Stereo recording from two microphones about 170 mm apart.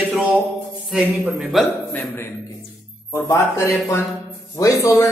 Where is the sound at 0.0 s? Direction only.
5° right (ahead or behind).